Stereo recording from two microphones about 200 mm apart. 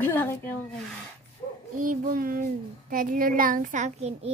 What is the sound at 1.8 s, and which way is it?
A child's voice, 40° right (ahead or behind).